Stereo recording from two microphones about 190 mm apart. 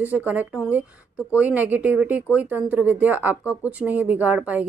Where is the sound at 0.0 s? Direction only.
10° right (ahead or behind).